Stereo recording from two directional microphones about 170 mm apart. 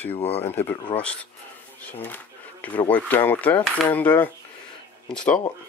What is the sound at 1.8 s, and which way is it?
Speech, 10° left (ahead or behind).